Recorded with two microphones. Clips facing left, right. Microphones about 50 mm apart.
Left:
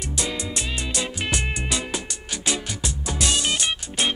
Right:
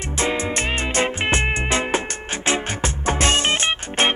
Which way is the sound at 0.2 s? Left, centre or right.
Right.